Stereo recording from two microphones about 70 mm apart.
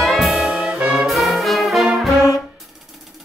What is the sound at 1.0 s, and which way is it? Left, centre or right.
Brass instrument, centre.